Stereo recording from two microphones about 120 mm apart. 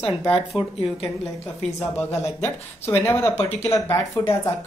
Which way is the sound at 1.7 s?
20° left (ahead or behind).